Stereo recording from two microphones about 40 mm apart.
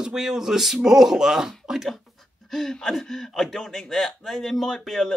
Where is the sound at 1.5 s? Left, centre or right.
Centre.